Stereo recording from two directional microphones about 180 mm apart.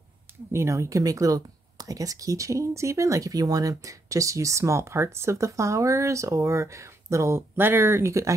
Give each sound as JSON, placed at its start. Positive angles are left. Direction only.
{"t": 0.5, "sound": "speech", "side_deg": -15}